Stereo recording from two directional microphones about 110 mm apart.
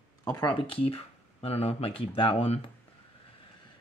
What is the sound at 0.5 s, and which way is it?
Speech, 55° left (ahead or behind).